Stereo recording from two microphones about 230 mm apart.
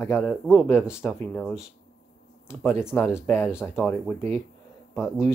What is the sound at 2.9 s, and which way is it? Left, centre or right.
Speech, centre.